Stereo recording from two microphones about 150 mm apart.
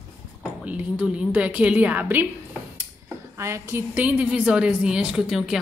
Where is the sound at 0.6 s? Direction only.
10° right (ahead or behind).